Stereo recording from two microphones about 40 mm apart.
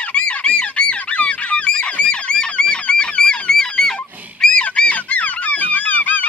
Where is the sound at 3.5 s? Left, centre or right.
Centre.